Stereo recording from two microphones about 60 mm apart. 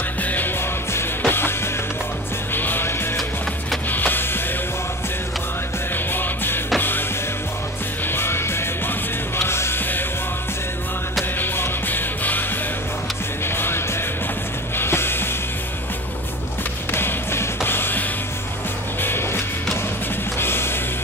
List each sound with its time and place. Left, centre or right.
0.2 s music: left
2.5 s music: left
3.9 s music: left
6.1 s music: left
8.1 s music: left
11.3 s music: left
13.6 s music: left
16.9 s music: left
19.0 s music: left